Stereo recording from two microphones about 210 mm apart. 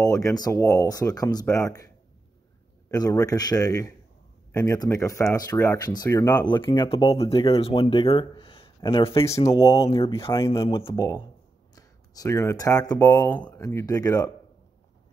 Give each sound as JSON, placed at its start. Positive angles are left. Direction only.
{"t": 0.0, "sound": "speech", "side_deg": 15}
{"t": 2.9, "sound": "speech", "side_deg": 15}